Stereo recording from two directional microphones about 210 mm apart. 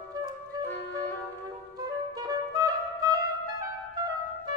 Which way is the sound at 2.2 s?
15° right (ahead or behind).